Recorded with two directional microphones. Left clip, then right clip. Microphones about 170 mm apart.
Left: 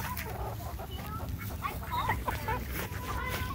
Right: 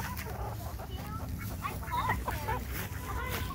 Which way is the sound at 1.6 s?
70° left (ahead or behind).